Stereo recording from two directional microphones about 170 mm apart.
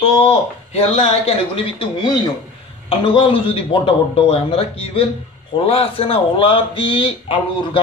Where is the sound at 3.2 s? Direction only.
30° left (ahead or behind).